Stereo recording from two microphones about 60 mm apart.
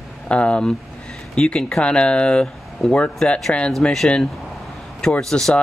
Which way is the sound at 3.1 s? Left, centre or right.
Centre.